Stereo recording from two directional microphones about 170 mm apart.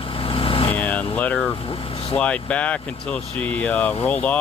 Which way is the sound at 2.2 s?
5° left (ahead or behind).